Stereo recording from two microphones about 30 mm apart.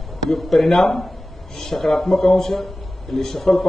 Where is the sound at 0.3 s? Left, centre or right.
Centre.